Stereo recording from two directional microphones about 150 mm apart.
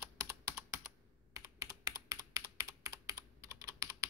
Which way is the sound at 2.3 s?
20° right (ahead or behind).